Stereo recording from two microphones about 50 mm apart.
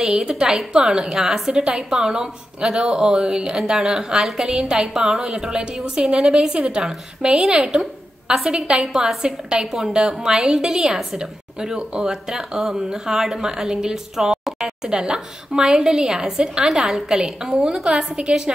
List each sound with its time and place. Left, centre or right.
0.0 s a woman's voice: centre